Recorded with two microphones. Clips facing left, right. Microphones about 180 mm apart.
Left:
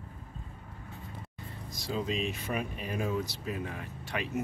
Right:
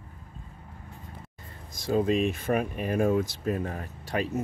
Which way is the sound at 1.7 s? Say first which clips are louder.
Right 9 dB; 50° right (ahead or behind).